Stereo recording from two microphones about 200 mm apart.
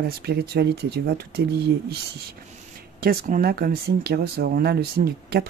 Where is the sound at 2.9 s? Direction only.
45° right (ahead or behind).